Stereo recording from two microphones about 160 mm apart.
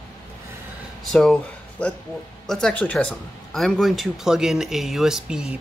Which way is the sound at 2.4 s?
5° left (ahead or behind).